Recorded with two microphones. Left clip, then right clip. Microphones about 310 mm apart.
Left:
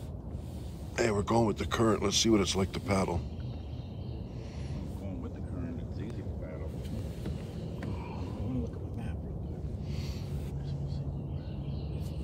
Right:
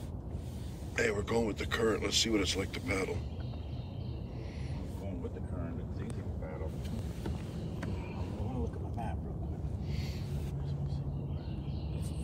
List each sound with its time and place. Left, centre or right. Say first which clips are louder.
0.9 s speech: left 3 dB; centre